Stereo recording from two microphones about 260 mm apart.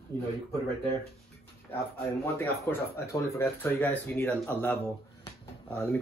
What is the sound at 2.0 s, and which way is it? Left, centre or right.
Speech, centre.